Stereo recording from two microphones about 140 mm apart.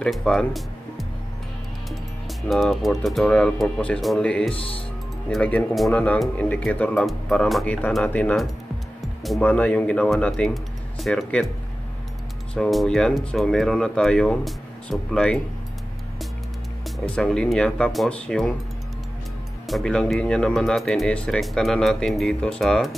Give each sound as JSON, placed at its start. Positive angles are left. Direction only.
{"t": 0.0, "sound": "speech", "side_deg": 5}
{"t": 4.6, "sound": "speech", "side_deg": 40}
{"t": 5.3, "sound": "speech", "side_deg": 10}
{"t": 12.5, "sound": "speech", "side_deg": 5}
{"t": 16.8, "sound": "speech", "side_deg": 5}
{"t": 19.7, "sound": "speech", "side_deg": 5}